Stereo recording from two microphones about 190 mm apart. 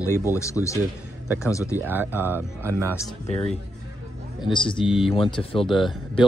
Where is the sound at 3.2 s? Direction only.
30° left (ahead or behind).